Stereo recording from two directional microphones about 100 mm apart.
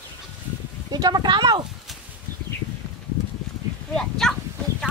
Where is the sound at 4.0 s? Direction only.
5° left (ahead or behind).